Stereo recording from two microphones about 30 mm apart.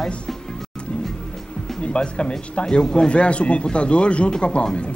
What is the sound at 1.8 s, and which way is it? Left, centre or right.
Speech, left.